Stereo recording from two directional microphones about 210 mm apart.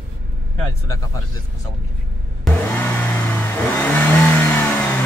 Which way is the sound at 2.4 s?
10° left (ahead or behind).